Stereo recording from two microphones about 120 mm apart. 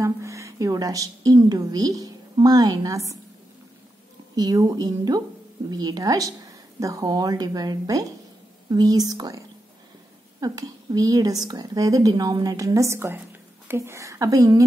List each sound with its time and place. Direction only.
0.0 s a woman's voice: 25° right (ahead or behind)
4.4 s a woman's voice: 30° right (ahead or behind)
10.4 s a woman's voice: 30° right (ahead or behind)